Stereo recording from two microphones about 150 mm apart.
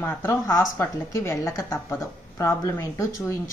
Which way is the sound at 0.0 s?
15° left (ahead or behind).